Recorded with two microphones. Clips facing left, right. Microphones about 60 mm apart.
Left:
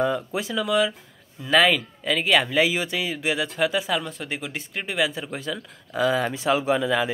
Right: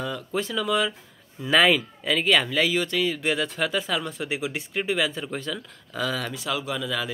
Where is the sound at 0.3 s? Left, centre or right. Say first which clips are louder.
Left 1 dB; centre.